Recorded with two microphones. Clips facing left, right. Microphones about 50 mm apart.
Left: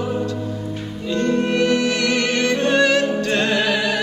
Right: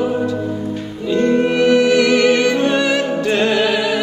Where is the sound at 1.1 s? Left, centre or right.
Centre.